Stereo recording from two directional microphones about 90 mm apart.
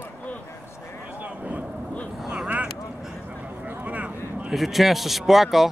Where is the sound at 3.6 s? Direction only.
20° right (ahead or behind).